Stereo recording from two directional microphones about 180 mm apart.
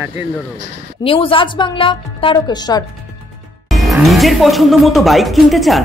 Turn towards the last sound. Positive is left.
turn(degrees=0)  # may be behind; listen again after turning